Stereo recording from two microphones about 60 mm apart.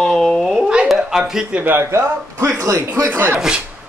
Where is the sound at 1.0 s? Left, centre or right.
Centre.